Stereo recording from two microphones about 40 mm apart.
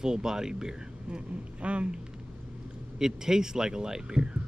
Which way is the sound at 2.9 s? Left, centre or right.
Centre.